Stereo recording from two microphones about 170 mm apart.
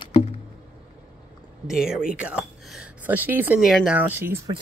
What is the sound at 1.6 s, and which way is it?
Speech, 5° right (ahead or behind).